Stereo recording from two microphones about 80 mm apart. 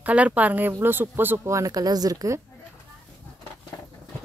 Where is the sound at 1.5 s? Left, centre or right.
Right.